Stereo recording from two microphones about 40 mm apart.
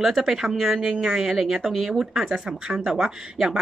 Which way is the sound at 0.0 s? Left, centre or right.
Centre.